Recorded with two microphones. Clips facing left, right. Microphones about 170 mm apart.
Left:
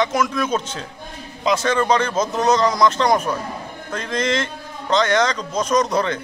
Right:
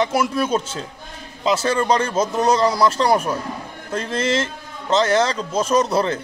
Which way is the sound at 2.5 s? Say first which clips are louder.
Left 1 dB; 30° right (ahead or behind).